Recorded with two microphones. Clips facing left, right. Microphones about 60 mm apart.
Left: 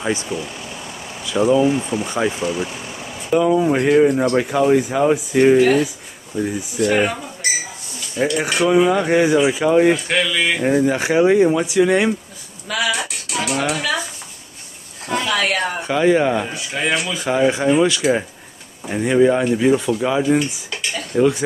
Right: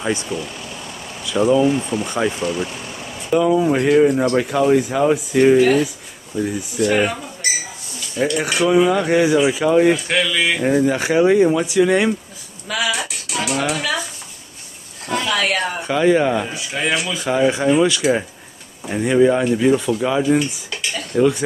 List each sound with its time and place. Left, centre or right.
0.0 s speech: centre
8.2 s speech: left
10.0 s speech: centre
12.9 s music: centre
15.0 s speech: centre